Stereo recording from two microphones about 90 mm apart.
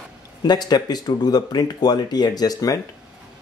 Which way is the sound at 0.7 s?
50° left (ahead or behind).